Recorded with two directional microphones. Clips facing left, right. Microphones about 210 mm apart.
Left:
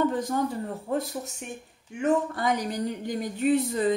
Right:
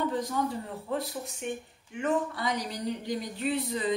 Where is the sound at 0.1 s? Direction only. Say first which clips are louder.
Left 3 dB; 50° left (ahead or behind).